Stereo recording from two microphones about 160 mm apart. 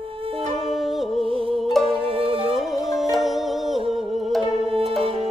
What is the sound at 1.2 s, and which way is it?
Music, 35° right (ahead or behind).